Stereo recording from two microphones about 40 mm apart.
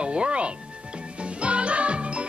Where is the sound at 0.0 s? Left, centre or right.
Right.